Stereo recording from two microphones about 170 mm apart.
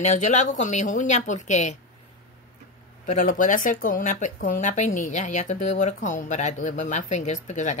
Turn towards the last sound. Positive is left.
turn(degrees=45)  # may be behind; listen again after turning